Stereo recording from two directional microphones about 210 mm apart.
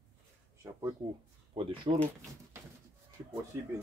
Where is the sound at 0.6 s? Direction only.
10° right (ahead or behind).